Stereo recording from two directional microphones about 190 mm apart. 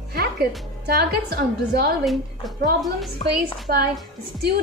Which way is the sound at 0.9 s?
55° right (ahead or behind).